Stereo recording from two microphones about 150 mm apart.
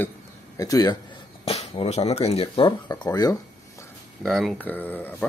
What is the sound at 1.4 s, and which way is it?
Speech, 40° left (ahead or behind).